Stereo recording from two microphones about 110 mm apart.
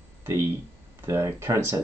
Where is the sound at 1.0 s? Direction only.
25° right (ahead or behind).